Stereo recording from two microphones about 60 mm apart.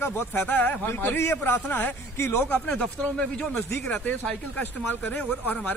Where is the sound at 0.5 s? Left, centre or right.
Left.